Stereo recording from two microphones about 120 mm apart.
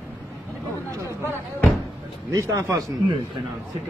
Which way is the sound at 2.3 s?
25° right (ahead or behind).